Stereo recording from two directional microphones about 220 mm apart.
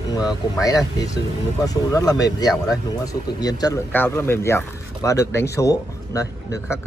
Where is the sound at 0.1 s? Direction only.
15° left (ahead or behind).